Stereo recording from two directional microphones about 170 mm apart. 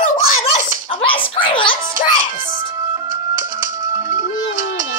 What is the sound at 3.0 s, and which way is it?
Music, 50° right (ahead or behind).